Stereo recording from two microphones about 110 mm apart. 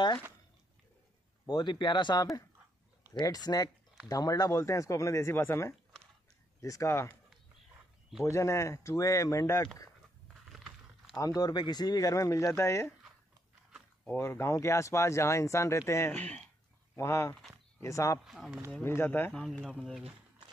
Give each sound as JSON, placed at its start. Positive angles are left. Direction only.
{"t": 1.5, "sound": "speech", "side_deg": 45}
{"t": 8.2, "sound": "speech", "side_deg": 25}
{"t": 10.2, "sound": "a sound", "side_deg": 0}
{"t": 11.1, "sound": "speech", "side_deg": 30}
{"t": 14.0, "sound": "speech", "side_deg": 20}
{"t": 16.1, "sound": "speech", "side_deg": 15}
{"t": 16.9, "sound": "speech", "side_deg": 25}
{"t": 18.2, "sound": "speech", "side_deg": 0}
{"t": 18.8, "sound": "speech", "side_deg": 20}
{"t": 19.3, "sound": "speech", "side_deg": 5}